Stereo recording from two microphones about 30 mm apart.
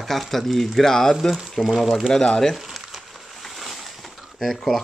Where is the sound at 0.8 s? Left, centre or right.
Centre.